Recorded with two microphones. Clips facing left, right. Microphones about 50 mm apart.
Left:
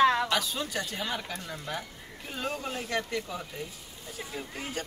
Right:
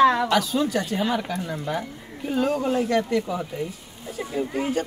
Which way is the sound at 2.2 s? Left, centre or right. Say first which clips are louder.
Right 12 dB; centre.